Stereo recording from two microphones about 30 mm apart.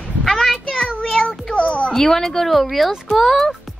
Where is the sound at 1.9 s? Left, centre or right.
Centre.